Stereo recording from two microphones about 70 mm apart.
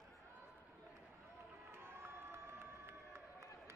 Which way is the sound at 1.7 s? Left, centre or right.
Right.